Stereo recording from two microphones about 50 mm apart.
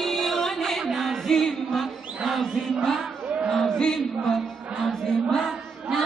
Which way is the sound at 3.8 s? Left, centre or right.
Centre.